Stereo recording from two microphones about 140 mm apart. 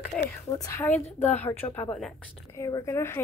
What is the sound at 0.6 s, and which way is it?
A woman's voice, 20° left (ahead or behind).